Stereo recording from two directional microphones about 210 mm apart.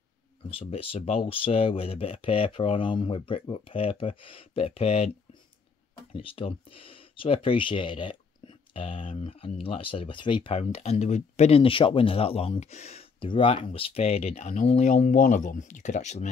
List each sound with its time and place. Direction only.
0.5 s speech: 25° left (ahead or behind)
6.1 s speech: 25° left (ahead or behind)